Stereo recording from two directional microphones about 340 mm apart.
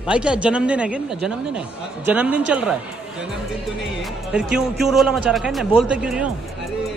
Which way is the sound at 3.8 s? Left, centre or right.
Centre.